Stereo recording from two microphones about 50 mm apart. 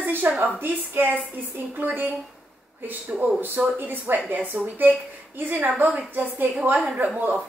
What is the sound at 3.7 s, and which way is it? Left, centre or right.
A woman's voice, right.